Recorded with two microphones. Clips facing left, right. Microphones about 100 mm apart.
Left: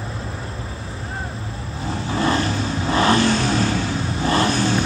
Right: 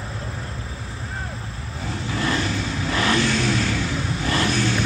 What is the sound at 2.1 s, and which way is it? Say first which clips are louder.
Vehicle: left 4 dB; 30° left (ahead or behind).